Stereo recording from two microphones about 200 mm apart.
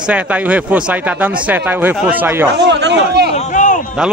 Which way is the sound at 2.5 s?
60° right (ahead or behind).